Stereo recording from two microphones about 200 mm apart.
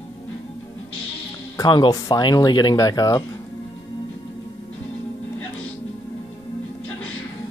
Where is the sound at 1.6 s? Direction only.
20° left (ahead or behind).